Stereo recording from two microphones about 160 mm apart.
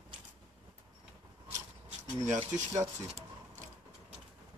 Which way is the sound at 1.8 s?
45° right (ahead or behind).